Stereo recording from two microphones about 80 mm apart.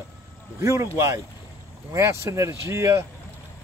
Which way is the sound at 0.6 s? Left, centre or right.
Right.